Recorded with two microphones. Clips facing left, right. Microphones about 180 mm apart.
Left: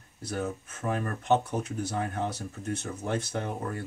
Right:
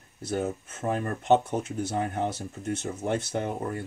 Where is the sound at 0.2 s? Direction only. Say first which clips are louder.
Right 3 dB; 25° right (ahead or behind).